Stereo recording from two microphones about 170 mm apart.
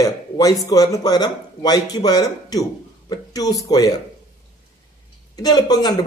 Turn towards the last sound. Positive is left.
turn(degrees=25)  # may be behind; listen again after turning